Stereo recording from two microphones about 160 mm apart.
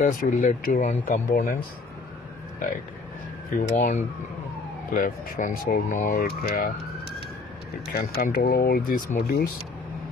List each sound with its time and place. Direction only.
0.0 s speech: 55° left (ahead or behind)
3.4 s speech: 55° left (ahead or behind); by 6.7 s 80° left
7.9 s speech: 65° left (ahead or behind)